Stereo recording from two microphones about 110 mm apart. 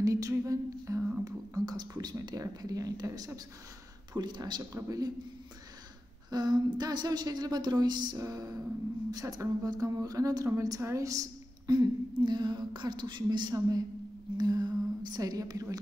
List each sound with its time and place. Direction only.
0.0 s humming: 30° right (ahead or behind)
1.2 s a sound: 35° right (ahead or behind)
4.1 s a woman's voice: 40° right (ahead or behind)
6.3 s a woman's voice: 40° right (ahead or behind)
12.2 s a woman's voice: 45° right (ahead or behind)